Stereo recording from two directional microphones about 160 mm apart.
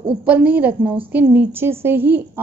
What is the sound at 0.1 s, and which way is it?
A woman's voice, 10° right (ahead or behind).